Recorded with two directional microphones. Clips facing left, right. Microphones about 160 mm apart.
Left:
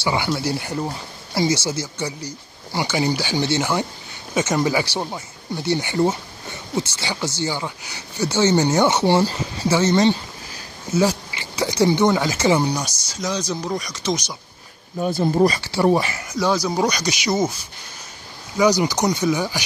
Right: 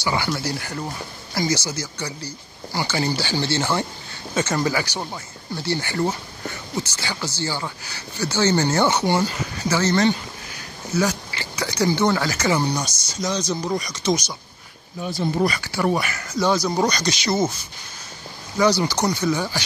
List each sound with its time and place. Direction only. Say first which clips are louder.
0.0 s speech: left 2 dB; 25° left (ahead or behind)
12.7 s speech: even; 5° left (ahead or behind)
15.0 s speech: left 5 dB; 50° left (ahead or behind)
15.4 s speech: left 5 dB; 30° left (ahead or behind)
16.3 s speech: even; 5° left (ahead or behind)
18.6 s speech: left 2 dB; 15° left (ahead or behind)